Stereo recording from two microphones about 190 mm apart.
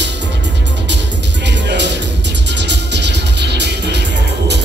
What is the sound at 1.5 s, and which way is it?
Music, 65° right (ahead or behind).